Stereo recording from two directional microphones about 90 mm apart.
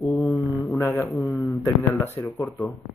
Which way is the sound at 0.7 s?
30° left (ahead or behind).